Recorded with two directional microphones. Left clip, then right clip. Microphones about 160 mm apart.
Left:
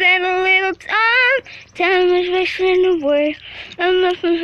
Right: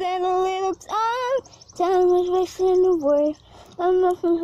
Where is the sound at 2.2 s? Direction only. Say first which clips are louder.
Left 4 dB; 30° left (ahead or behind).